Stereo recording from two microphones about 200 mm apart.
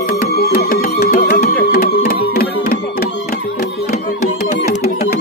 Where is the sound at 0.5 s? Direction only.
50° left (ahead or behind).